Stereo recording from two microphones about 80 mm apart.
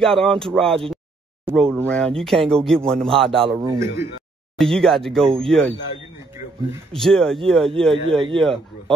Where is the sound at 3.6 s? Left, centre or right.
Right.